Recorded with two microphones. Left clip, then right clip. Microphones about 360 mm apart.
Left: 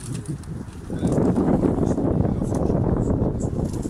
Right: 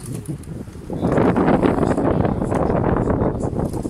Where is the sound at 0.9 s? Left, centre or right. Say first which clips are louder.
Right 5 dB; right.